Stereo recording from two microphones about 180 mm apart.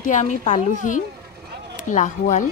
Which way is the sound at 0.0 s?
45° left (ahead or behind).